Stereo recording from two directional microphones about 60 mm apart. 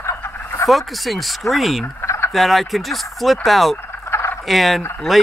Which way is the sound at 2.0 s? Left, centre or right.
Left.